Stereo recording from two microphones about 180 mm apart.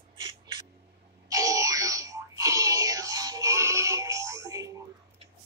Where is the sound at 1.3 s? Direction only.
20° right (ahead or behind).